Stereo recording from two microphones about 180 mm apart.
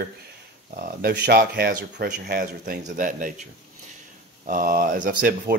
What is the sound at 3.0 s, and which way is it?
Speech, 45° right (ahead or behind).